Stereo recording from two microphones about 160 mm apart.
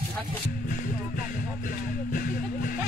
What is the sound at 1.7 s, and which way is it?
Music, 60° left (ahead or behind).